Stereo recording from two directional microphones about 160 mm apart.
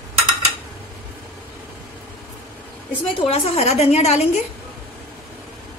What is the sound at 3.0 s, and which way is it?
A woman's voice, 35° left (ahead or behind).